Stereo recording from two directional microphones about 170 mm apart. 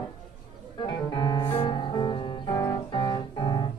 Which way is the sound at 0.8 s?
25° left (ahead or behind).